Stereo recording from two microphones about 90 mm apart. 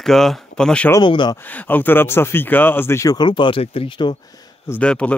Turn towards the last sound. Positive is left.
turn(degrees=15)  # may be behind; listen again after turning